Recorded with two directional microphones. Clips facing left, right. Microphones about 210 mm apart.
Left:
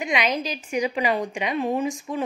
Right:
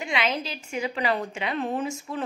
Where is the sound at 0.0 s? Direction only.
15° left (ahead or behind).